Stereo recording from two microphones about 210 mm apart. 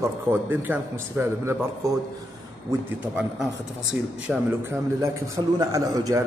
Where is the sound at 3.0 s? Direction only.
5° right (ahead or behind).